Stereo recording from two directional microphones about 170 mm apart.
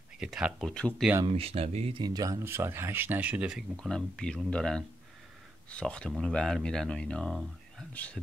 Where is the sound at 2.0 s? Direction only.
20° right (ahead or behind).